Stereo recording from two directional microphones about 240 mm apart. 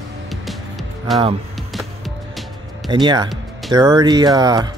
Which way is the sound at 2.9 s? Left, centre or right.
Centre.